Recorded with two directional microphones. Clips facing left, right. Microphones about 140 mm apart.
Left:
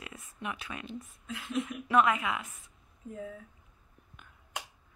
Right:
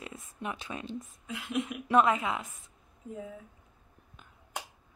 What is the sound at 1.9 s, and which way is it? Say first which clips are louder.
Speech: right 1 dB; 35° right (ahead or behind).